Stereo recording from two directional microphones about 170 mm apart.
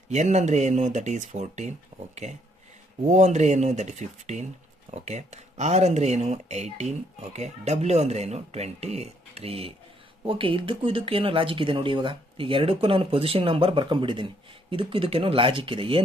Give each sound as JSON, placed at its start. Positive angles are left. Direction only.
{"t": 0.1, "sound": "speech", "side_deg": -40}